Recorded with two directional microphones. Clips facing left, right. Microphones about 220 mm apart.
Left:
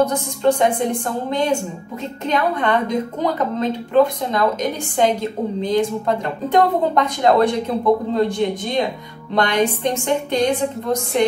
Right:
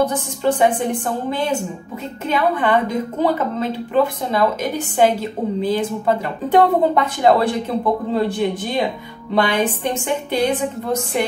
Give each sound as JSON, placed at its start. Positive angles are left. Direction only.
{"t": 0.0, "sound": "a woman's voice", "side_deg": -5}